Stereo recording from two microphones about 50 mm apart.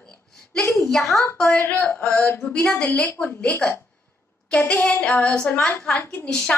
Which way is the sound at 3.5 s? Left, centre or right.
Left.